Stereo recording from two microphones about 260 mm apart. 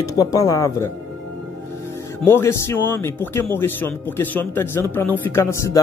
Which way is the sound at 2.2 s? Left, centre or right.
Centre.